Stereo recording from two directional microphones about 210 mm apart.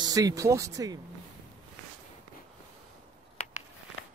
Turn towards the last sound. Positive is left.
turn(degrees=30)  # may be behind; listen again after turning